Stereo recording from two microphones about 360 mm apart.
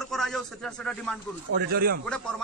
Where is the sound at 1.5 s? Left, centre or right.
Right.